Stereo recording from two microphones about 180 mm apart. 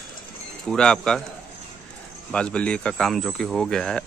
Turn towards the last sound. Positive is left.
turn(degrees=0)  # may be behind; listen again after turning